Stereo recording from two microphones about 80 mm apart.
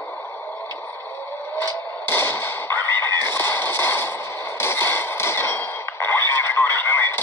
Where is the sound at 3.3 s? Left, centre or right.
Left.